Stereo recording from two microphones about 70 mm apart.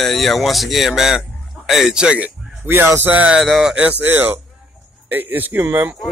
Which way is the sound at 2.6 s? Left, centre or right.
Right.